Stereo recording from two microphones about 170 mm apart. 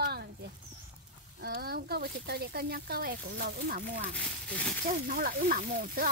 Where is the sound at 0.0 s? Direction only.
70° right (ahead or behind).